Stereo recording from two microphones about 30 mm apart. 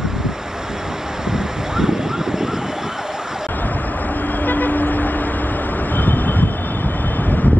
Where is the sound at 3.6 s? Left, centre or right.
Left.